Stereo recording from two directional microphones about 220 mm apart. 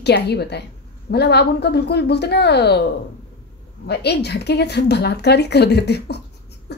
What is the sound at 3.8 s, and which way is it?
A woman's voice, 50° left (ahead or behind).